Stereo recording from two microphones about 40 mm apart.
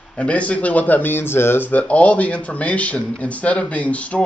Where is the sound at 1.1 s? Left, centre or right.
Left.